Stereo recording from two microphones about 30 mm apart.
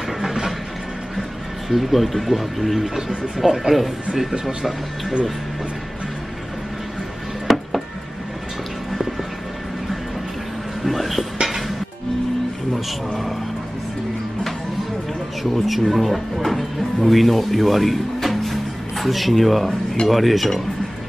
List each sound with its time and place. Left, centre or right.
0.2 s a sound: centre
1.7 s speech: centre
7.4 s music: centre
10.8 s music: centre
15.5 s speech: centre